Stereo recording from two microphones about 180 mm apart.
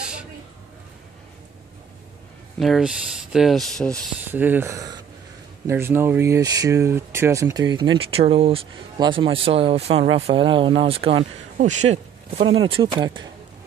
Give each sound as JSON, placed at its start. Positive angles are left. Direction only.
{"t": 0.0, "sound": "a sound", "side_deg": -5}
{"t": 2.6, "sound": "speech", "side_deg": 0}
{"t": 4.3, "sound": "speech", "side_deg": -10}
{"t": 11.5, "sound": "speech", "side_deg": -40}